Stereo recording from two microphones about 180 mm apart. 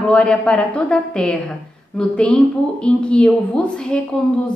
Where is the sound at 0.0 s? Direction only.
5° left (ahead or behind).